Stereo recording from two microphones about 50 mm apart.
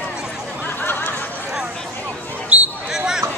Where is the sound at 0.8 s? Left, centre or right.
Left.